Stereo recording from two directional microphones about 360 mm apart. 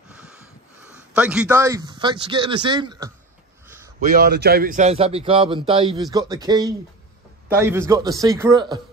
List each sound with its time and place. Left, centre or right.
0.8 s a man's voice: centre
3.6 s a sound: centre
4.0 s a man's voice: right